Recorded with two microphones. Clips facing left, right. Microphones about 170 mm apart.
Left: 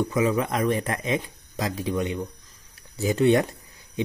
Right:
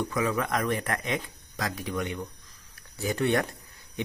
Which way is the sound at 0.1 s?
15° left (ahead or behind).